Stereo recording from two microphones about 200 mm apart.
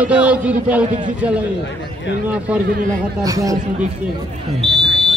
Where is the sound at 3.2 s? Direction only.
15° right (ahead or behind).